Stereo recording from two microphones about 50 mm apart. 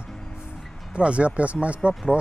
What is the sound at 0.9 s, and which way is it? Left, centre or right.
Speech, right.